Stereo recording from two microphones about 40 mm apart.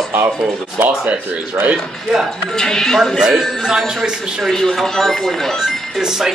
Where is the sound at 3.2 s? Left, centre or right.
Centre.